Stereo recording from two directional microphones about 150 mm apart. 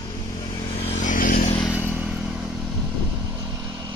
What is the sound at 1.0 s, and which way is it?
Vehicle, 65° left (ahead or behind).